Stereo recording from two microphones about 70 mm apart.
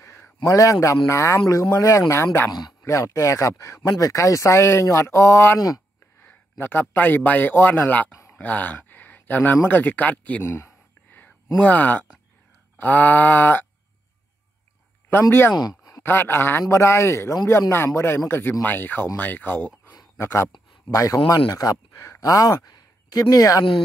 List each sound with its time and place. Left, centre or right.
0.5 s speech: left
6.6 s speech: left
8.1 s a sound: left
8.4 s a sound: left
9.7 s speech: left
10.4 s a man's voice: left
11.6 s speech: left
15.0 s a man's voice: left
20.9 s speech: left
21.9 s a sound: left
22.2 s speech: left
22.7 s a sound: left